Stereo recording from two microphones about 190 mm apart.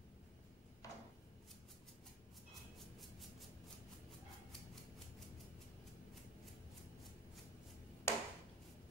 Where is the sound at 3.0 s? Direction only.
Centre (ahead or behind).